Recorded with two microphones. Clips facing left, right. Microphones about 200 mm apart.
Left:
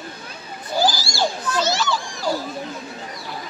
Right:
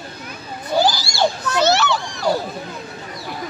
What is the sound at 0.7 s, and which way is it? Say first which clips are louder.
Children playing: right 3 dB; 65° right (ahead or behind).